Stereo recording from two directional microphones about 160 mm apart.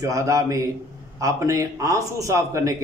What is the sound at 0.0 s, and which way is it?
A man's voice, 20° right (ahead or behind).